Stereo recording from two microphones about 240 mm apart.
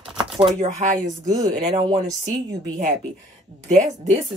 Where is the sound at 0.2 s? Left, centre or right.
Centre.